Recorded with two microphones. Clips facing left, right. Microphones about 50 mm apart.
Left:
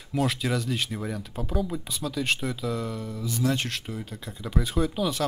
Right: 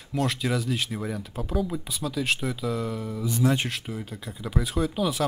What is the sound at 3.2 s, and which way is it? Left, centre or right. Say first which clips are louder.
Speech: right 3 dB; right.